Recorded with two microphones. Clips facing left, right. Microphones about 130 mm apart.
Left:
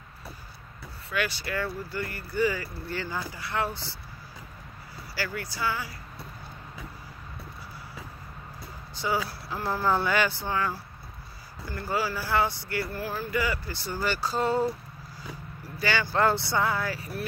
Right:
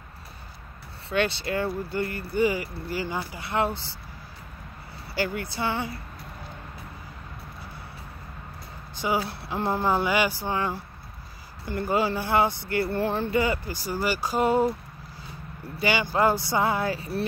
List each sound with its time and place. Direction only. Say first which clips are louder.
1.1 s speech: right 5 dB; 25° right (ahead or behind)
5.1 s speech: right 5 dB; 20° right (ahead or behind)
9.0 s speech: right 2 dB; 20° right (ahead or behind)
14.0 s speech: right 3 dB; 15° right (ahead or behind)